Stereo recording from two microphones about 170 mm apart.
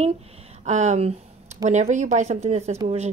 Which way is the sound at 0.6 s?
45° right (ahead or behind).